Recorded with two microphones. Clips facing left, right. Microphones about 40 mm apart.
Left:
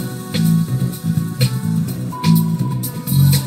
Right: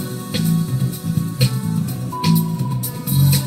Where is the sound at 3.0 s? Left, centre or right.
Left.